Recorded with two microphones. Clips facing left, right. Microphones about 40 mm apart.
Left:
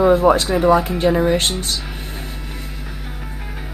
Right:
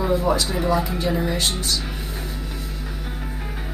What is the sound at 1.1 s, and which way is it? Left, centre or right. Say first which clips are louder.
Speech: left 9 dB; left.